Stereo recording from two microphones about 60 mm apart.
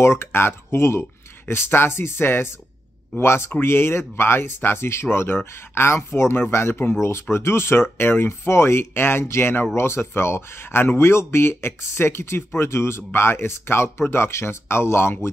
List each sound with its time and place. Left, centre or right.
0.0 s speech: left